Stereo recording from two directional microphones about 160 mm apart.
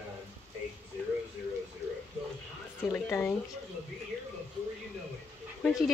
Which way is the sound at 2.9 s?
10° left (ahead or behind).